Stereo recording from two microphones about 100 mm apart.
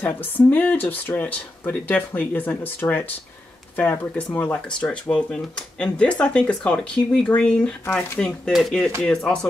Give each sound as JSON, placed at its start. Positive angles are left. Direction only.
{"t": 0.0, "sound": "speech", "side_deg": 15}